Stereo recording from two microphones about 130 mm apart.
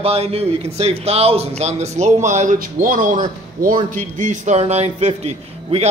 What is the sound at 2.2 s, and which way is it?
A man's voice, 70° right (ahead or behind).